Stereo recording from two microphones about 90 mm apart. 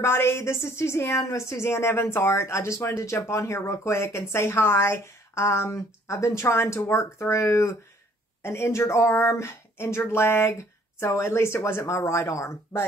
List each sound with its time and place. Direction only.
0.0 s a woman's voice: 30° left (ahead or behind)